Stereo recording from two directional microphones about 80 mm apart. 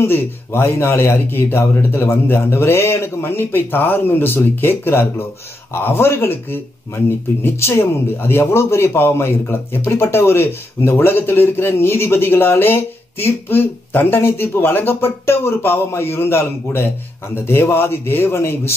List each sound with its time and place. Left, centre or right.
0.0 s a man's voice: left